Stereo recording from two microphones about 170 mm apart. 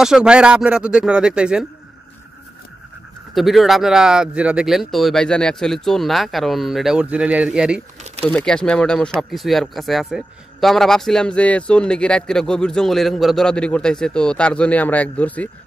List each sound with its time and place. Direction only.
0.0 s speech: 5° right (ahead or behind)
3.3 s speech: centre (ahead or behind)
8.2 s speech: 5° left (ahead or behind)